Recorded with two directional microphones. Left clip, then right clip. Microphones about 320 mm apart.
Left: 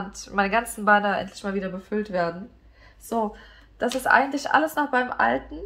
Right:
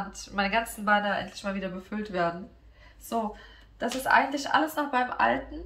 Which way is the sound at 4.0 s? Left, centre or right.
Centre.